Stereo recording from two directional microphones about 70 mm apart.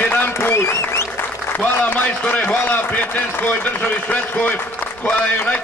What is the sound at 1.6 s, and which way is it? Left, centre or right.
Speech, left.